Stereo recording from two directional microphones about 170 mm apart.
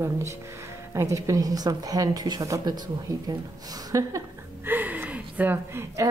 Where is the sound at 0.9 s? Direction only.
20° right (ahead or behind).